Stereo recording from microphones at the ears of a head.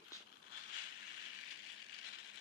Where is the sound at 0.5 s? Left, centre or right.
Left.